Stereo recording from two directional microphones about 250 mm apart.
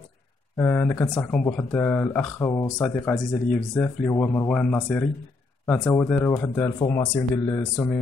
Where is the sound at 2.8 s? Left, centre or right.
Centre.